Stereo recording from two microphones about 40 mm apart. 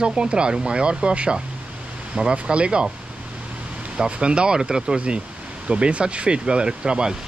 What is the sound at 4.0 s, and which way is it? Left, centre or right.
Speech, right.